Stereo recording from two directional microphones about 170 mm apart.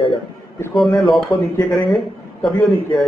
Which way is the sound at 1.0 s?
Centre (ahead or behind).